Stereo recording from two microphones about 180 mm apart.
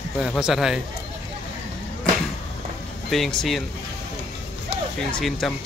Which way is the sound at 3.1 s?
Centre (ahead or behind).